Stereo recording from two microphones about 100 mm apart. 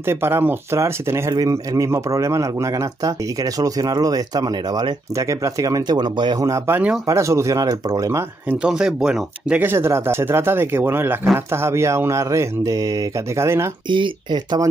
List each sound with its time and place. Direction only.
0.0 s speech: 25° right (ahead or behind)
1.3 s speech: 35° right (ahead or behind)
6.7 s speech: 15° right (ahead or behind)
7.1 s speech: 30° right (ahead or behind)
8.6 s speech: 5° right (ahead or behind)
9.6 s speech: 25° right (ahead or behind); by 13.5 s 40° right (ahead or behind)
13.8 s speech: 55° right (ahead or behind)